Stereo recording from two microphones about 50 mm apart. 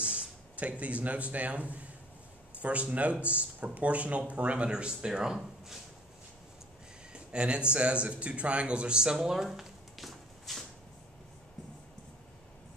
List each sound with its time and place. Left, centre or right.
0.0 s speech: right
7.1 s a sound: right
7.7 s speech: right; by 10.6 s centre